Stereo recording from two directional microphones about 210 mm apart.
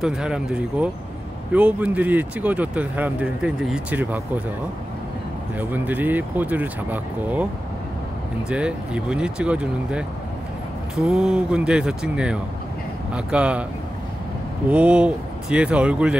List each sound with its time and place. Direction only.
0.0 s speech: 5° right (ahead or behind)
5.6 s speech: 10° right (ahead or behind)
8.5 s speech: 5° right (ahead or behind)
14.7 s speech: 5° right (ahead or behind)